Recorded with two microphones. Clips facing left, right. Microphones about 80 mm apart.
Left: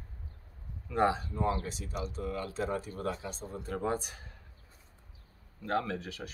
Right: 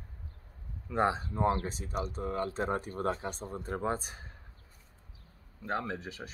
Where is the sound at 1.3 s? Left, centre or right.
Right.